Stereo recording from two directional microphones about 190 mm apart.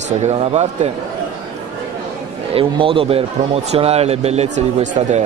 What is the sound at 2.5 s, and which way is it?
Speech, 30° right (ahead or behind).